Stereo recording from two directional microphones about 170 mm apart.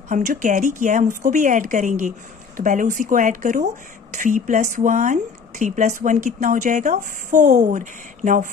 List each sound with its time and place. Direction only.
0.1 s a woman's voice: 50° right (ahead or behind)